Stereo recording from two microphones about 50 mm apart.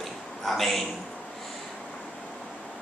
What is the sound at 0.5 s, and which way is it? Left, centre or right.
Speech, centre.